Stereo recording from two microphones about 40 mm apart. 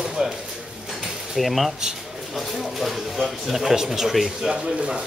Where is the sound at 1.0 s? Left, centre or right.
Centre.